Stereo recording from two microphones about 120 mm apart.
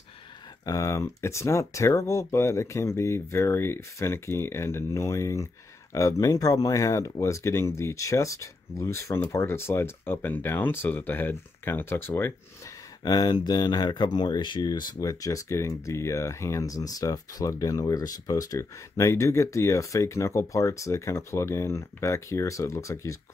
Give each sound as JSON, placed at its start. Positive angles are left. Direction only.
{"t": 0.7, "sound": "speech", "side_deg": 25}
{"t": 13.0, "sound": "speech", "side_deg": 35}